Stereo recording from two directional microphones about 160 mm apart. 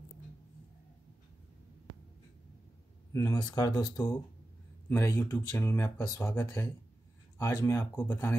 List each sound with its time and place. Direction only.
3.1 s speech: 20° left (ahead or behind)